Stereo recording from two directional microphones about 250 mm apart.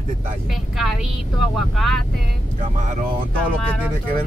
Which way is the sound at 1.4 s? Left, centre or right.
Centre.